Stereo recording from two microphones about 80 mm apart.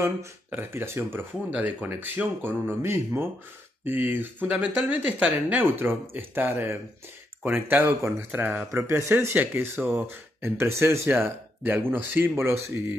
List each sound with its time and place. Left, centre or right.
0.5 s speech: right
1.5 s speech: centre
8.8 s speech: right